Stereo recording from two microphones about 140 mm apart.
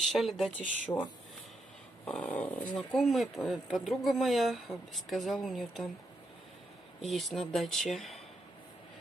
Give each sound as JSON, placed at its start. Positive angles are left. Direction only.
{"t": 0.1, "sound": "speech", "side_deg": 0}
{"t": 0.9, "sound": "speech", "side_deg": 25}
{"t": 2.0, "sound": "speech", "side_deg": 5}
{"t": 7.0, "sound": "speech", "side_deg": 0}